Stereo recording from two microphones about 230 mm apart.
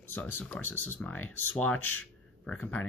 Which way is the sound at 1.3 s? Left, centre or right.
Left.